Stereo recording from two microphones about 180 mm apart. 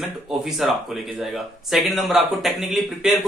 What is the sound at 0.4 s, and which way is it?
Speech, centre (ahead or behind).